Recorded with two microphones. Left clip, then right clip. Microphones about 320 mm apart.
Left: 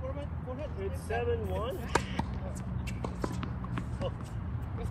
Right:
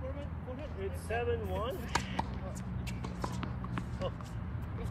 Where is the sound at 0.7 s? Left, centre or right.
Centre.